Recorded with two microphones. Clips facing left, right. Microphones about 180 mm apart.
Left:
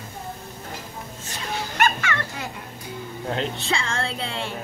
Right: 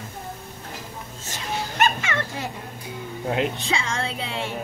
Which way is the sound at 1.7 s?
20° right (ahead or behind).